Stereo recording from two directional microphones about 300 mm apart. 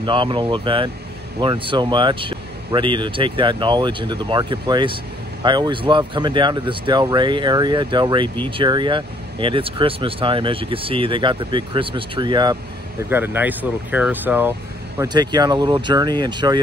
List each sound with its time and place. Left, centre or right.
0.0 s speech: centre